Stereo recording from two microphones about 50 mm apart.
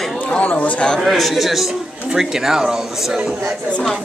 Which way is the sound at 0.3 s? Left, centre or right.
Left.